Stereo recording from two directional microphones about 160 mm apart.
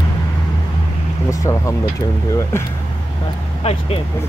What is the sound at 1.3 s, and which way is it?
Speech, 20° left (ahead or behind).